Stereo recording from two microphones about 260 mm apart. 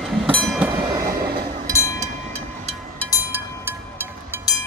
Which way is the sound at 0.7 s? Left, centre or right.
Centre.